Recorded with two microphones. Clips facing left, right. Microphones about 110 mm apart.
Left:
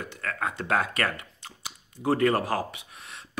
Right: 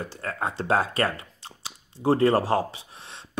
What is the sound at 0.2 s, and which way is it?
Speech, 30° right (ahead or behind).